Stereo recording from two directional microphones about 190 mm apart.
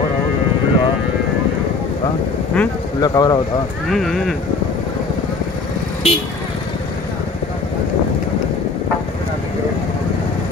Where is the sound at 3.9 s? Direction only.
Centre (ahead or behind).